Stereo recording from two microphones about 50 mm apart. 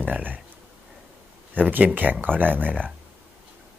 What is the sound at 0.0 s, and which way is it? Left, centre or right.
Speech, right.